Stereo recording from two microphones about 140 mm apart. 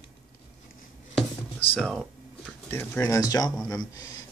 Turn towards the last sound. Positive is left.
turn(degrees=25)  # may be behind; listen again after turning